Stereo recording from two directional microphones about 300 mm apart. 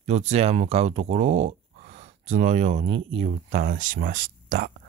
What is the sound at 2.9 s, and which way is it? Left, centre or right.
Speech, right.